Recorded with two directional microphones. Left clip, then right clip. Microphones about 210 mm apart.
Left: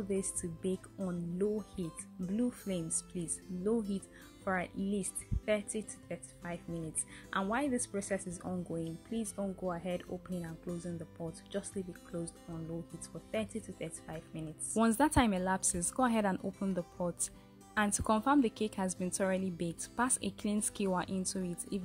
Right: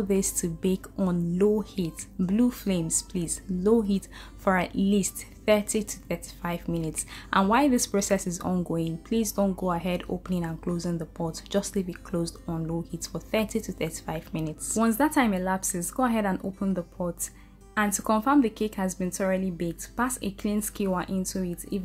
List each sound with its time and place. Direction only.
0.1 s speech: 20° left (ahead or behind)
14.7 s a woman's voice: 45° left (ahead or behind)